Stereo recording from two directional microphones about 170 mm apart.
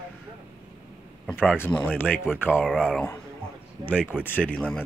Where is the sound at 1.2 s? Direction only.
5° left (ahead or behind).